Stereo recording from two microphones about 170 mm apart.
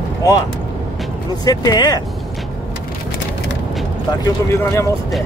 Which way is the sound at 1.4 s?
25° left (ahead or behind).